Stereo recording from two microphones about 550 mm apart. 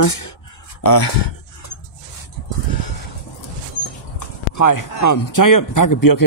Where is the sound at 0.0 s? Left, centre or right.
Left.